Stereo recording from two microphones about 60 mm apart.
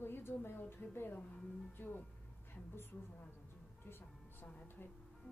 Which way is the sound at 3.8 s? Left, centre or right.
Left.